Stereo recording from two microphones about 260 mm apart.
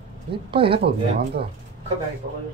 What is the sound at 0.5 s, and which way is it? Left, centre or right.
Speech, right.